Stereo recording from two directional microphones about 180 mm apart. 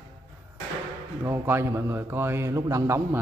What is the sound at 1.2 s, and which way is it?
A man's voice, 15° right (ahead or behind).